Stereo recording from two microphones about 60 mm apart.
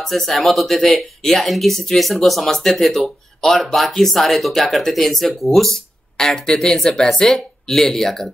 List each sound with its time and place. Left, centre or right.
0.0 s speech: centre